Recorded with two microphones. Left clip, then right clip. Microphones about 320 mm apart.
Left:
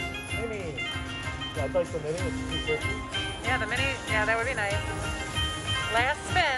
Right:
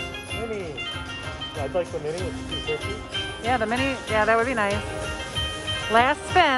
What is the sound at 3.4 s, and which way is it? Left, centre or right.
Speech, centre.